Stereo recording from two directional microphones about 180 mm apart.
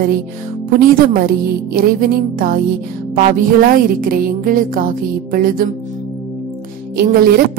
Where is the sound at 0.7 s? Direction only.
50° right (ahead or behind).